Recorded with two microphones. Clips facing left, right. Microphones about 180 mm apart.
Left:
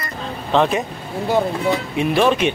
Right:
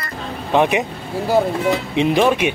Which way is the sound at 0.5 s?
15° right (ahead or behind).